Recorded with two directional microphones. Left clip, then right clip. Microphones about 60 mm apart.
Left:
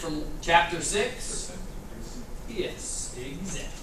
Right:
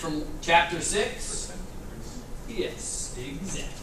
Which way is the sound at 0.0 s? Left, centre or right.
Right.